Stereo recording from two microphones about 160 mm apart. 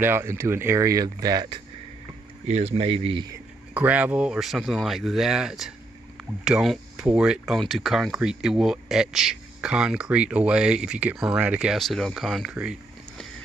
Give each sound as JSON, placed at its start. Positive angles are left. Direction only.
{"t": 0.0, "sound": "speech", "side_deg": -15}
{"t": 2.4, "sound": "speech", "side_deg": -40}
{"t": 3.7, "sound": "speech", "side_deg": -10}